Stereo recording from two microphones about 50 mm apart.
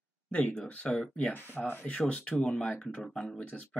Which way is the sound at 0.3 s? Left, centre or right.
Left.